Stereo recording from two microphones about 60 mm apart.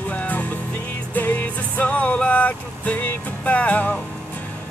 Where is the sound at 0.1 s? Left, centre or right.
Left.